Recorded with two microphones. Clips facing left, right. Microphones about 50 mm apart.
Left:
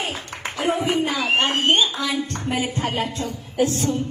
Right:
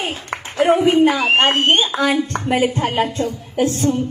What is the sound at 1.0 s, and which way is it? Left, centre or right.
Speech, right.